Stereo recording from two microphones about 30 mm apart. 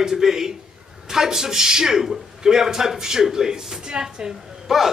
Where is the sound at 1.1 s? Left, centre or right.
Centre.